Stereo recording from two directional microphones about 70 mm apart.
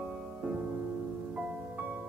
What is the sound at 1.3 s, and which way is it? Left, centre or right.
Music, right.